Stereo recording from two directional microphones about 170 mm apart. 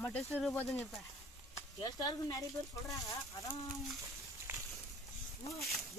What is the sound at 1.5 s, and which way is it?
Speech, 25° left (ahead or behind).